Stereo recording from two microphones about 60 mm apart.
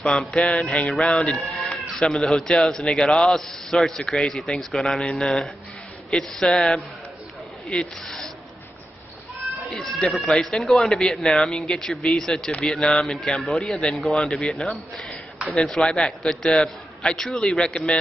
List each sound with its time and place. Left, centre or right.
0.5 s speech: centre
9.7 s speech: centre
14.5 s speech: centre